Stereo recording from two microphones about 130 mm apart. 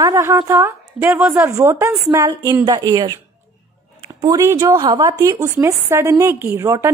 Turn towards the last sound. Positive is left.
turn(degrees=-25)  # may be behind; listen again after turning